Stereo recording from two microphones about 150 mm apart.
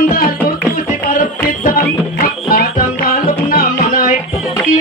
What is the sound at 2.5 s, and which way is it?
Music, 75° left (ahead or behind).